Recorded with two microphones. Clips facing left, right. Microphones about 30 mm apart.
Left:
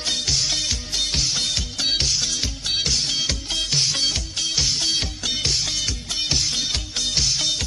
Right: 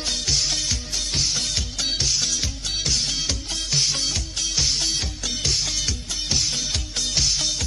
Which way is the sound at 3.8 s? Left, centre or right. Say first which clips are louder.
Even; left.